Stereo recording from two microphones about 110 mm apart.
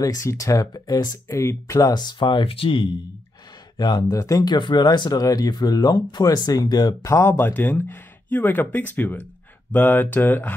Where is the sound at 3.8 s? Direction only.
40° left (ahead or behind).